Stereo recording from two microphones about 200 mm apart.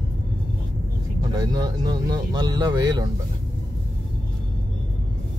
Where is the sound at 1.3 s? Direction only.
20° right (ahead or behind).